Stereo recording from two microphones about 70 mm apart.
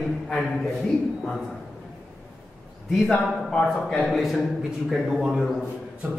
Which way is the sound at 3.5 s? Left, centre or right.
Centre.